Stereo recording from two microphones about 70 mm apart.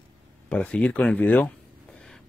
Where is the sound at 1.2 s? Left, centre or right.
Left.